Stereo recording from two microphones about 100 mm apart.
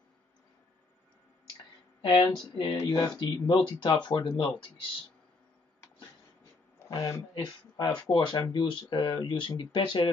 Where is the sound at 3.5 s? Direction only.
50° left (ahead or behind).